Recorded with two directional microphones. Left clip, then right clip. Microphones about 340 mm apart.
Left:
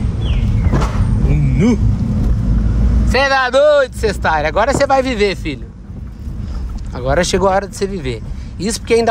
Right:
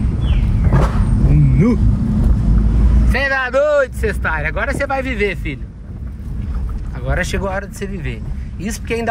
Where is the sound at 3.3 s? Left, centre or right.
Centre.